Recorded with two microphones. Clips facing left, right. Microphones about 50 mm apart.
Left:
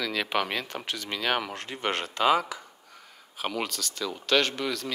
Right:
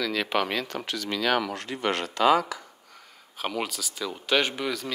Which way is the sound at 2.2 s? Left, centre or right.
Left.